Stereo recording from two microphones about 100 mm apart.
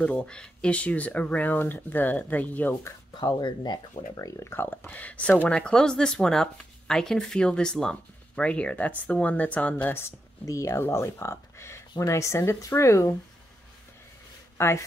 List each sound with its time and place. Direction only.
0.0 s speech: 10° left (ahead or behind)
3.2 s speech: 50° left (ahead or behind); by 10.0 s 20° left (ahead or behind)
10.4 s speech: 30° left (ahead or behind)
14.6 s speech: 25° left (ahead or behind)